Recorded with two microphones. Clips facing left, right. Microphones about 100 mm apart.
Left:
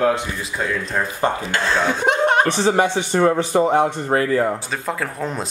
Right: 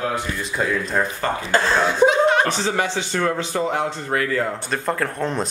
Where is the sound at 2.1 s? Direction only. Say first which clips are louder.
Even; 55° left (ahead or behind).